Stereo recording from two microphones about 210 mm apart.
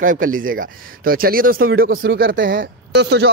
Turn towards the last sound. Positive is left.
turn(degrees=-50)  # may be behind; listen again after turning